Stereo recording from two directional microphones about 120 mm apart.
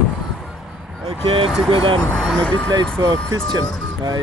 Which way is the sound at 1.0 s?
50° right (ahead or behind).